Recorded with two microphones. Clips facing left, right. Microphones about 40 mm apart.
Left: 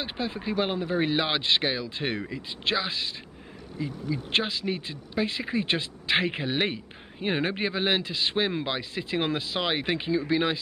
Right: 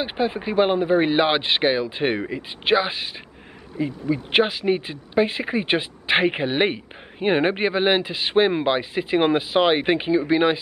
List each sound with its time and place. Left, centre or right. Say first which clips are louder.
0.0 s speech: right 8 dB; right